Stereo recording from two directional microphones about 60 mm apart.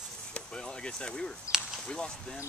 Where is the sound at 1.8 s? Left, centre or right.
Centre.